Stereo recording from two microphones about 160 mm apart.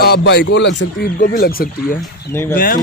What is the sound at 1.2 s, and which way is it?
Speech, 65° left (ahead or behind).